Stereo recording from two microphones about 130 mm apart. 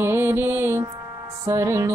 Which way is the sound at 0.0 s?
15° right (ahead or behind).